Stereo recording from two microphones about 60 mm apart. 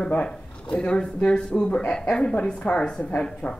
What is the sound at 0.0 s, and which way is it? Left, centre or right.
Speech, centre.